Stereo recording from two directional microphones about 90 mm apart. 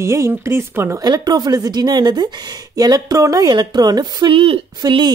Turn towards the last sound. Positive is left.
turn(degrees=-45)  # may be behind; listen again after turning